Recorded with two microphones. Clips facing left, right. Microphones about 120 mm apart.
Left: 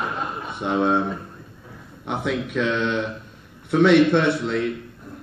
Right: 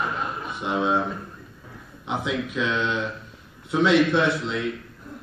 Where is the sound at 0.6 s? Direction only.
50° left (ahead or behind).